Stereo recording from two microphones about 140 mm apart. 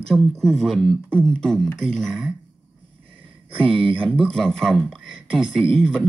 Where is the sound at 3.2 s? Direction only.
40° right (ahead or behind).